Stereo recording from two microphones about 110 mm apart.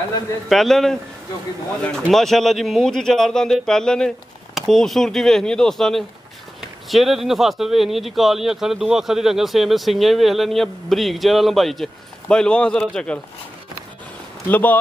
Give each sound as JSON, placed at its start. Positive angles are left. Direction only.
{"t": 0.5, "sound": "speech", "side_deg": 0}
{"t": 14.5, "sound": "speech", "side_deg": 15}